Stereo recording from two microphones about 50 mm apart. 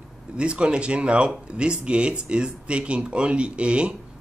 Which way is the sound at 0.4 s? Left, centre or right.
Right.